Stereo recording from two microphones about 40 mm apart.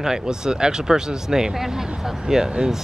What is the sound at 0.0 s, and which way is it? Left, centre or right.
Speech, centre.